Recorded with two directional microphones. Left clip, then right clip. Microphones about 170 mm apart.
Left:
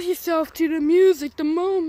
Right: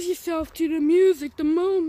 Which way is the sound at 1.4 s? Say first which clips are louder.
Even; 20° right (ahead or behind).